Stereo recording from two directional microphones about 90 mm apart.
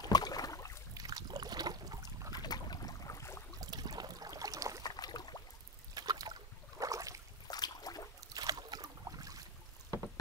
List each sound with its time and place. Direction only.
0.0 s boat: 45° left (ahead or behind)
0.9 s boat: 45° right (ahead or behind)
2.3 s boat: 50° left (ahead or behind); by 3.4 s 30° left (ahead or behind)
3.6 s boat: 45° right (ahead or behind)
4.8 s boat: 50° left (ahead or behind)
5.9 s a sound: 45° right (ahead or behind)
6.8 s boat: 40° right (ahead or behind)
7.4 s a sound: 45° left (ahead or behind)
8.4 s boat: 50° right (ahead or behind)